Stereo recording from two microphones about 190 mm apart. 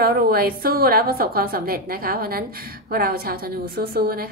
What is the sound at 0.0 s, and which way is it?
A woman's voice, 55° right (ahead or behind).